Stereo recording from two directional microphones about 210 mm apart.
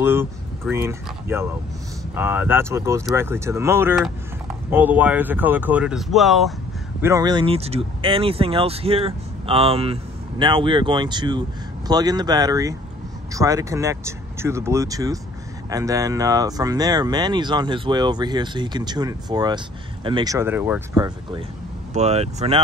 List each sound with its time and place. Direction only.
0.0 s speech: 10° right (ahead or behind)
7.0 s speech: 15° right (ahead or behind)
21.9 s speech: 30° right (ahead or behind)